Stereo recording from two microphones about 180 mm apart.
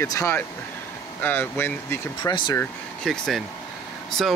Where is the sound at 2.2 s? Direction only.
25° left (ahead or behind).